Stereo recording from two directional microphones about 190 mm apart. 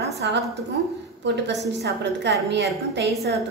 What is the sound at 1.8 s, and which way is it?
Speech, 65° right (ahead or behind).